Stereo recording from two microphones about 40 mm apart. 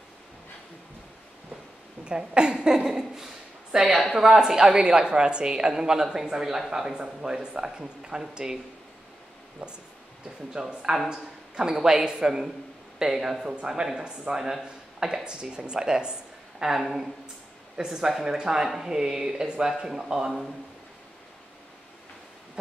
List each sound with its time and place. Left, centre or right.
2.0 s a woman's voice: right
9.6 s a woman's voice: right